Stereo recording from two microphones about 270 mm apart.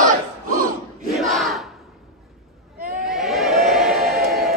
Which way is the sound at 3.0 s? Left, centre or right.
Centre.